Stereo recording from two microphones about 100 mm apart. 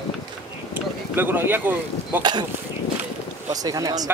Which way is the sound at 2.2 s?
45° right (ahead or behind).